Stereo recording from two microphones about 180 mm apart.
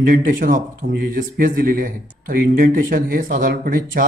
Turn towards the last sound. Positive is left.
turn(degrees=-50)  # may be behind; listen again after turning